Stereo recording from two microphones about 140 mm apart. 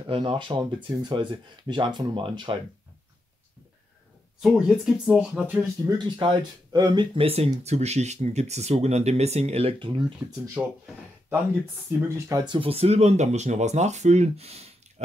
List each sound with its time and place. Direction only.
0.0 s speech: 35° right (ahead or behind)
4.4 s speech: centre (ahead or behind)
5.9 s speech: 30° right (ahead or behind)
10.6 s speech: 25° right (ahead or behind)
11.9 s speech: 15° right (ahead or behind)
12.5 s speech: 45° right (ahead or behind)